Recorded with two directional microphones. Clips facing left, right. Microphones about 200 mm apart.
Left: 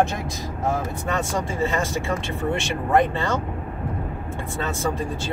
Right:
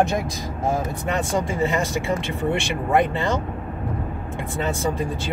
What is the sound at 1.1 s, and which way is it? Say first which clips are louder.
Speech: right 2 dB; 15° right (ahead or behind).